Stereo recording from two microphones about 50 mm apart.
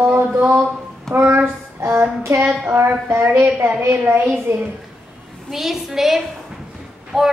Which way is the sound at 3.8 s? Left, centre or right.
Right.